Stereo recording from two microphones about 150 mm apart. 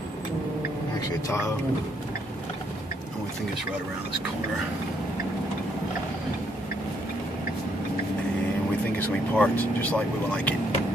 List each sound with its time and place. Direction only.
8.9 s speech: 10° left (ahead or behind)